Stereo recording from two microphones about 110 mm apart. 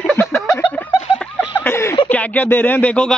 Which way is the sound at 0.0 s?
15° left (ahead or behind).